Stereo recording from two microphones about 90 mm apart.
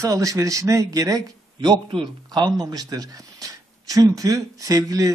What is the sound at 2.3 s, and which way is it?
Speech, 45° right (ahead or behind).